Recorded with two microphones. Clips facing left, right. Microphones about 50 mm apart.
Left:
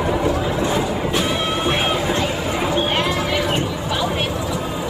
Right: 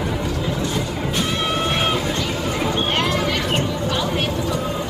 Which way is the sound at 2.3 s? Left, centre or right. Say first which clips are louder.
Left 1 dB; centre.